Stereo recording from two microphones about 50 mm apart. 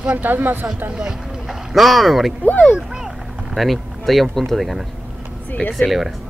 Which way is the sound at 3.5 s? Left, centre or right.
Centre.